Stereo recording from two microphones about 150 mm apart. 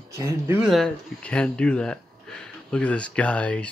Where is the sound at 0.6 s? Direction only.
Centre (ahead or behind).